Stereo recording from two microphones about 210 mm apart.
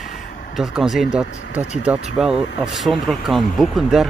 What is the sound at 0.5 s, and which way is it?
Speech, centre (ahead or behind).